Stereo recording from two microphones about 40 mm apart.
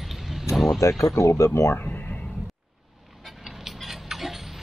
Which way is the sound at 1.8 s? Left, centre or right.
Left.